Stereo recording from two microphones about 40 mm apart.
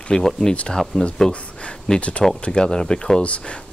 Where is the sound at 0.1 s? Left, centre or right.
Centre.